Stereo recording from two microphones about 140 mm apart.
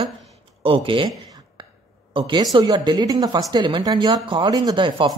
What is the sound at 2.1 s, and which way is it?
Speech, 30° right (ahead or behind).